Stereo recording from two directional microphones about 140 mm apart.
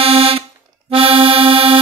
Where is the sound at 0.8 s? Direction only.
40° right (ahead or behind).